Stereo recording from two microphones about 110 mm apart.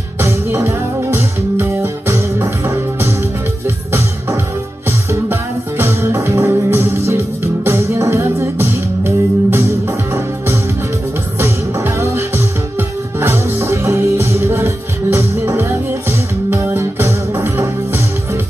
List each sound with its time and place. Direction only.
0.2 s music: 25° right (ahead or behind)